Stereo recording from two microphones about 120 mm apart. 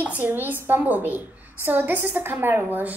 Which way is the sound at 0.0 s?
15° right (ahead or behind).